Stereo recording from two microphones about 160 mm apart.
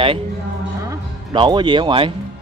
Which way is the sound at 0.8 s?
30° right (ahead or behind).